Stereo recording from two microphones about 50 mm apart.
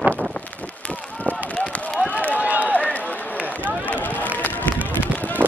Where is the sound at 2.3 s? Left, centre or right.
Right.